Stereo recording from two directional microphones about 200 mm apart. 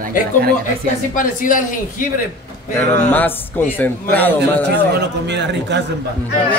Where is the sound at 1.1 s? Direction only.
40° left (ahead or behind).